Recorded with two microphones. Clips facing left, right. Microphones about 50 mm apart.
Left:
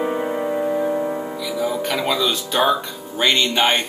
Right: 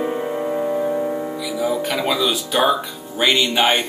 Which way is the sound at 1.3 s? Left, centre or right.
Centre.